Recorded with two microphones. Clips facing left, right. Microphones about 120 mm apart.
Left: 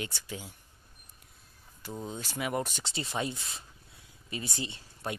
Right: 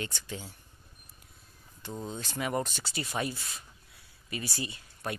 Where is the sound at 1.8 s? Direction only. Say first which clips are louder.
Even; 5° left (ahead or behind).